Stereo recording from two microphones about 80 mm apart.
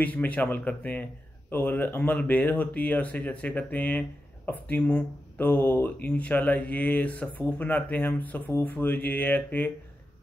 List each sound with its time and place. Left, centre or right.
0.0 s speech: left